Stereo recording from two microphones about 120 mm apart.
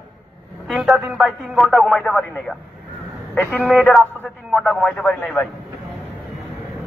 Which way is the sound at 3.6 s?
Centre (ahead or behind).